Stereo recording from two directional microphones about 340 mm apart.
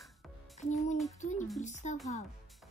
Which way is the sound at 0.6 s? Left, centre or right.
Left.